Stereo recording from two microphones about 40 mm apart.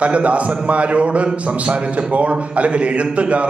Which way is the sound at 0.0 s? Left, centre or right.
Right.